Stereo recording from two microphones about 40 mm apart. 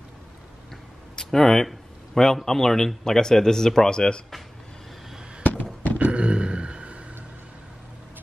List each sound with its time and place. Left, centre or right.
1.1 s speech: centre
5.4 s fireworks: left
5.9 s a sound: right